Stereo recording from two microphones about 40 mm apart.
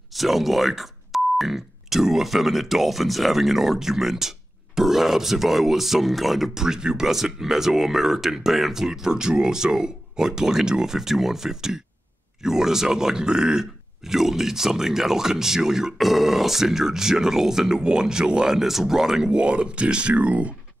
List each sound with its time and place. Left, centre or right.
0.1 s speech: centre
6.5 s speech: centre
18.5 s speech: centre
19.3 s speech: right